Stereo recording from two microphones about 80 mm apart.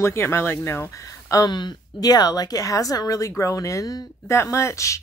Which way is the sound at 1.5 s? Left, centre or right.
Left.